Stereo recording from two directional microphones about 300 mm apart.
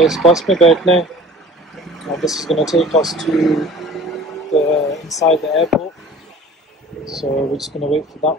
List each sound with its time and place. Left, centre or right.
0.0 s speech: centre
7.1 s speech: centre
7.9 s speech: centre